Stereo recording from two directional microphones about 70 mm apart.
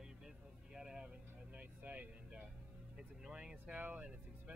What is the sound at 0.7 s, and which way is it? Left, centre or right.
Music, centre.